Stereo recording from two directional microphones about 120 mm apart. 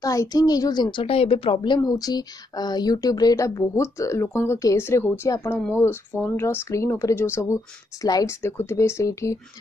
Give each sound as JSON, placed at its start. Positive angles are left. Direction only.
{"t": 0.0, "sound": "speech", "side_deg": 30}
{"t": 0.9, "sound": "speech", "side_deg": 50}
{"t": 1.8, "sound": "speech", "side_deg": 30}
{"t": 8.4, "sound": "speech", "side_deg": 20}